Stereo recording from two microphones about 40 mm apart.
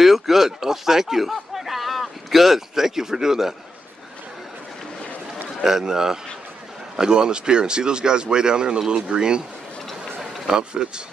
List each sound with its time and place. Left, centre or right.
0.0 s speech: centre
5.6 s a man's voice: centre
10.3 s run: centre
10.6 s speech: right